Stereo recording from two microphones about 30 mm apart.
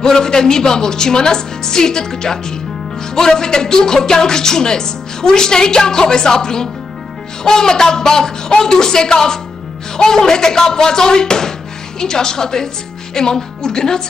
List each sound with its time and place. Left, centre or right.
0.0 s speech: left